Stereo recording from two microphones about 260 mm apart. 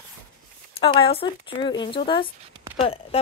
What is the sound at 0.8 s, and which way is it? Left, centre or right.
A woman's voice, left.